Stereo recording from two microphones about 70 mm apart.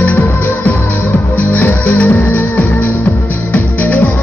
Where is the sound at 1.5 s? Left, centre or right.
Left.